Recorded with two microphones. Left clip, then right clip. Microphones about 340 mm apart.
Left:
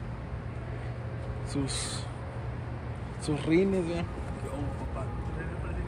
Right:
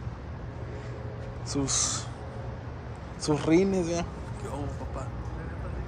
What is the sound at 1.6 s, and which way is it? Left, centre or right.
Speech, centre.